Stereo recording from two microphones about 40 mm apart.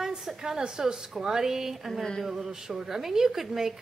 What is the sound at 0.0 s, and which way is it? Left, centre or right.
A woman's voice, centre.